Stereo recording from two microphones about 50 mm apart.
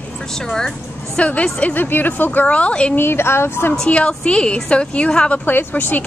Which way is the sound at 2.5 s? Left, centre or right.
Left.